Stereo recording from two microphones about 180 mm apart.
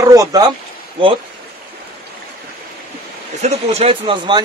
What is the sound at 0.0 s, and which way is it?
Speech, 20° right (ahead or behind).